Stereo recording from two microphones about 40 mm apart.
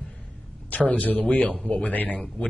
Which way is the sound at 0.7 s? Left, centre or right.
Left.